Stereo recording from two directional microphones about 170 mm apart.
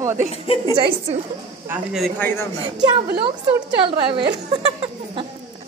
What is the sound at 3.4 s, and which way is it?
Speech, 30° right (ahead or behind).